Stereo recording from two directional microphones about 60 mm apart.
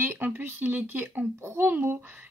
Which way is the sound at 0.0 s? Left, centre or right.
Right.